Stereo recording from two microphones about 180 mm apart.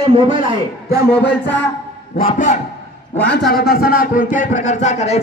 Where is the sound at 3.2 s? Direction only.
65° left (ahead or behind); by 5.2 s 40° left (ahead or behind).